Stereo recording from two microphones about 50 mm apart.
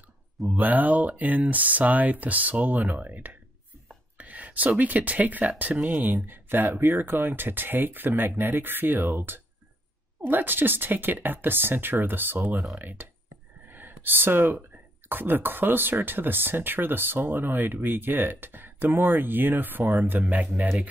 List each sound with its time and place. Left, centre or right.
0.5 s speech: right
13.7 s a sound: right
15.0 s speech: right